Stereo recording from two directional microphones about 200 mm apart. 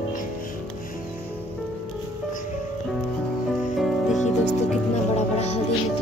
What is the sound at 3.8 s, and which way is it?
Music, centre (ahead or behind).